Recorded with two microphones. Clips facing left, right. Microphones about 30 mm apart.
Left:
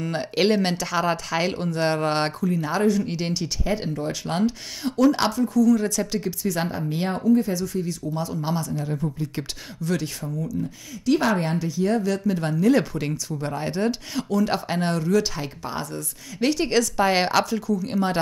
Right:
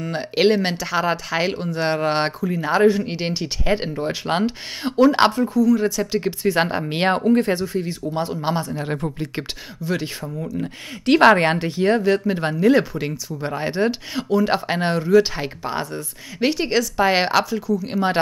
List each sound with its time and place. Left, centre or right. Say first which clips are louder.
0.0 s speech: right 4 dB; centre; by 5.6 s right
5.6 s speech: right 1 dB; right
6.2 s speech: right 6 dB; right
6.7 s speech: right 6 dB; right
7.6 s speech: right 3 dB; right
8.8 s speech: right 2 dB; right
9.3 s speech: right 3 dB; right
10.6 s speech: right 3 dB; right; by 18.1 s centre